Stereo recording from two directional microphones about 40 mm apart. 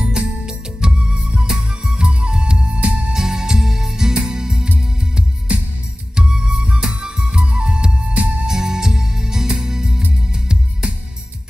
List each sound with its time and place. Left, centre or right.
0.0 s music: centre
2.6 s music: right
3.1 s music: centre
5.5 s music: right
8.5 s music: centre